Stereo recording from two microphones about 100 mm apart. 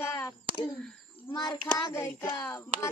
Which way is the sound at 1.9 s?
25° left (ahead or behind).